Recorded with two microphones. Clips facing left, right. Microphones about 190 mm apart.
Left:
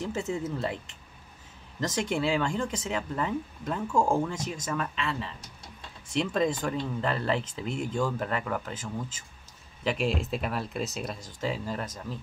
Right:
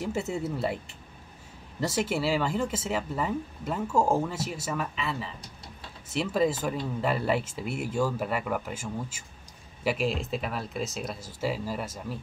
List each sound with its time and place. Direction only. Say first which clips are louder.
0.0 s speech: right 1 dB; 10° right (ahead or behind)